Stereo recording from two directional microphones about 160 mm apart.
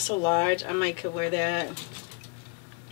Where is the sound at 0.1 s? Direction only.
20° left (ahead or behind).